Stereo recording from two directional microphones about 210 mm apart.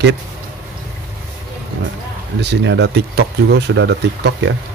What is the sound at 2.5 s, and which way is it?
Speech, 60° right (ahead or behind).